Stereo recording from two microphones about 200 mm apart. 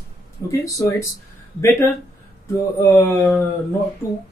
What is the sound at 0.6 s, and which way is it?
Speech, 15° left (ahead or behind).